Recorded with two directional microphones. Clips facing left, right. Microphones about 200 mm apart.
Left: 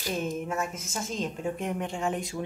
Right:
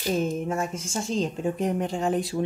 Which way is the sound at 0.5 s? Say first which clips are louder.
Right 4 dB; 30° right (ahead or behind).